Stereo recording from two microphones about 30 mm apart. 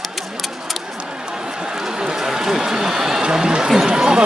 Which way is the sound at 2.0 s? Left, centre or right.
Right.